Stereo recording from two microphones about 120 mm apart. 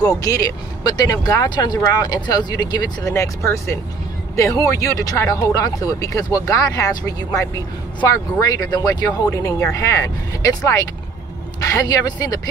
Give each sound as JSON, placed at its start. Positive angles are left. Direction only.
{"t": 0.0, "sound": "speech", "side_deg": 30}